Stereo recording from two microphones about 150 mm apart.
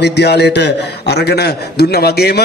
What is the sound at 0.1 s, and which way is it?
A man's voice, 90° left.